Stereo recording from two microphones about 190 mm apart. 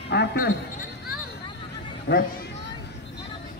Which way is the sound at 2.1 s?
55° left (ahead or behind).